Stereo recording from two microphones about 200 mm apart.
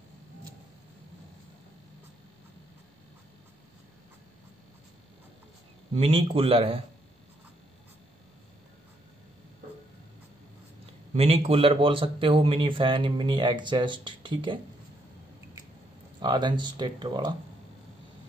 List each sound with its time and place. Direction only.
5.9 s speech: 30° right (ahead or behind)
11.1 s speech: 30° right (ahead or behind)
16.2 s speech: 20° right (ahead or behind)